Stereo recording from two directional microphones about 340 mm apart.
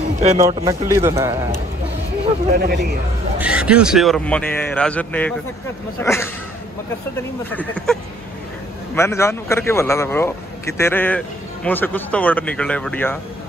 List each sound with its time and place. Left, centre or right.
0.2 s a man's voice: centre
2.5 s a man's voice: right
3.3 s a man's voice: centre
7.5 s a man's voice: centre